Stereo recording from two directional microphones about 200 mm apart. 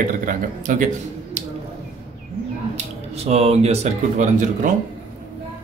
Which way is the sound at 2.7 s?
30° right (ahead or behind).